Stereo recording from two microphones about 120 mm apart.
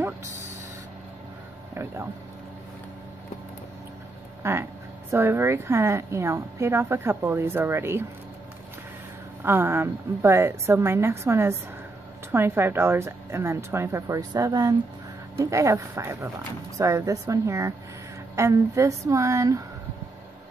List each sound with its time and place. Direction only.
4.4 s a woman's voice: 20° right (ahead or behind)
9.4 s a woman's voice: 20° right (ahead or behind)